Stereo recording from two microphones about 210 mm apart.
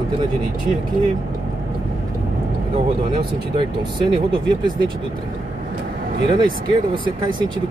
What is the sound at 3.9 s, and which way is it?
Speech, 20° right (ahead or behind).